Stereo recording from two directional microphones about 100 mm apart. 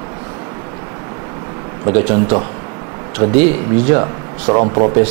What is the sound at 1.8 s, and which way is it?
Speech, 25° right (ahead or behind).